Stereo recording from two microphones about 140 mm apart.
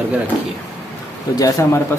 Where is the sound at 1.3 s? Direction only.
25° left (ahead or behind).